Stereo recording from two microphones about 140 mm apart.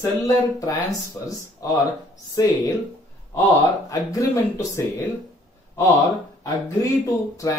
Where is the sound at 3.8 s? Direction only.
25° left (ahead or behind).